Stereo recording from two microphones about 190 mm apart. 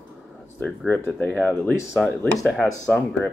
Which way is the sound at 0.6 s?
5° left (ahead or behind).